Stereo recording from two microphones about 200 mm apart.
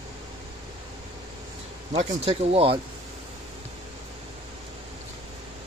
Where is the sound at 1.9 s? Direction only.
30° right (ahead or behind).